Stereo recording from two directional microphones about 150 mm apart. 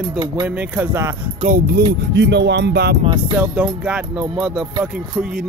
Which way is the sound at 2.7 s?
90° right.